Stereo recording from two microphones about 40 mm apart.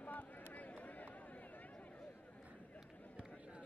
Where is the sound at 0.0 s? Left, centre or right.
Left.